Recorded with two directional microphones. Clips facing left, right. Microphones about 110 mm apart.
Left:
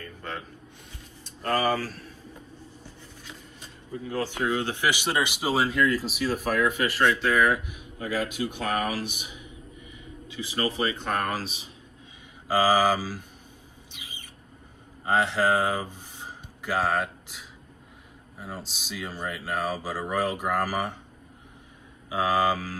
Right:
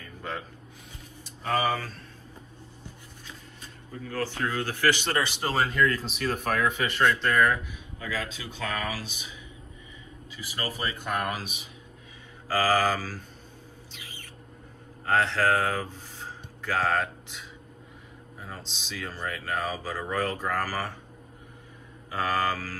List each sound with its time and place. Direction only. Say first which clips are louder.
0.0 s a sound: even; 5° right (ahead or behind)
1.2 s speech: left 1 dB; centre (ahead or behind)
4.1 s speech: left 3 dB; 15° left (ahead or behind)
10.3 s speech: left 6 dB; 20° left (ahead or behind)
12.4 s speech: left 3 dB; 15° left (ahead or behind)
13.9 s bird: left 2 dB; 15° left (ahead or behind)
15.0 s speech: left 1 dB; 15° left (ahead or behind)
22.1 s speech: left 4 dB; 15° left (ahead or behind)